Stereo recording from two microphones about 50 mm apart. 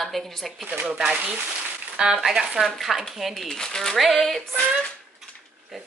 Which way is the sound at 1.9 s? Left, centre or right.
Centre.